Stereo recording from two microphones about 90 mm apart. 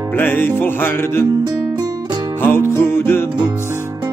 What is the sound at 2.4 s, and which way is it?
Music, 25° left (ahead or behind).